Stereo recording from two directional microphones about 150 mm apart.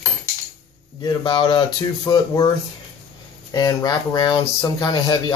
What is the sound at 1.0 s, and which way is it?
Speech, 30° left (ahead or behind).